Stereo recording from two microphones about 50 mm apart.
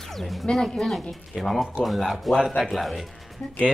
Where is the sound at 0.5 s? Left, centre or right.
Centre.